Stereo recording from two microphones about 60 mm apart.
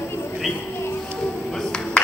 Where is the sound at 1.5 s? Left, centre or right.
Centre.